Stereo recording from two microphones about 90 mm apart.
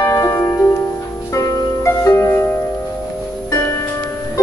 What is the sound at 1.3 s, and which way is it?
Harp, 35° left (ahead or behind).